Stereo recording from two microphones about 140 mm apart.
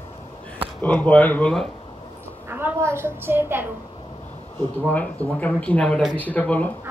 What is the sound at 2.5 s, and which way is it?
Child singing, 15° right (ahead or behind).